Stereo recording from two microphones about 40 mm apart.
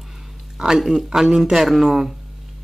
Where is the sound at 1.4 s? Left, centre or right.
Centre.